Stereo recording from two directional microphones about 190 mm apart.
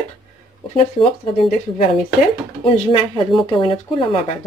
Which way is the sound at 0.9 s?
30° left (ahead or behind).